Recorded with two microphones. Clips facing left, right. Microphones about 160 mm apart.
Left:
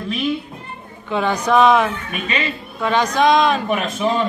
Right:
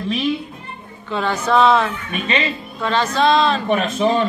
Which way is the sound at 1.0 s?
15° left (ahead or behind).